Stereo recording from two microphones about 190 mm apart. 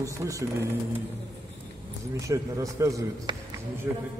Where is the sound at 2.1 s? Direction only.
15° right (ahead or behind).